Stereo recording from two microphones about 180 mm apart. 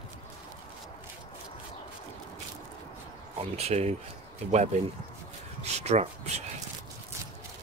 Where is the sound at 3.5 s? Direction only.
35° right (ahead or behind).